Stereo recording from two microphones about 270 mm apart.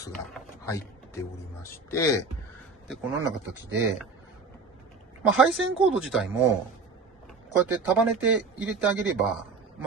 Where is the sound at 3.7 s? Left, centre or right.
Centre.